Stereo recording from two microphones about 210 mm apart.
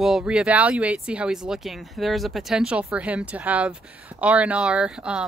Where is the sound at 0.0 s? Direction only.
5° right (ahead or behind).